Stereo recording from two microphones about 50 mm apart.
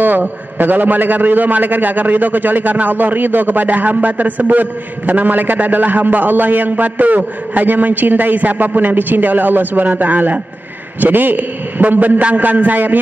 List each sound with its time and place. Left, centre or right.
0.0 s a man's voice: right